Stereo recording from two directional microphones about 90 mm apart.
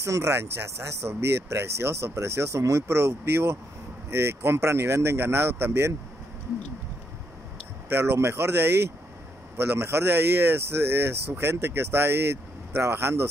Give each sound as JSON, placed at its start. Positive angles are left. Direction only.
{"t": 0.0, "sound": "speech", "side_deg": -35}
{"t": 7.9, "sound": "speech", "side_deg": -25}